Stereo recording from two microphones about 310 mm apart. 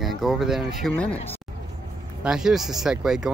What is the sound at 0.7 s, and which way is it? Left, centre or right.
Speech, centre.